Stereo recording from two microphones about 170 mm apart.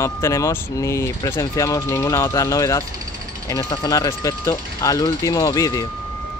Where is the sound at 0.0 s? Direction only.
15° left (ahead or behind).